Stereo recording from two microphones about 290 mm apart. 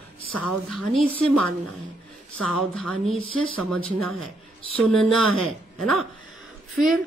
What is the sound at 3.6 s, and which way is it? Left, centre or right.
Speech, centre.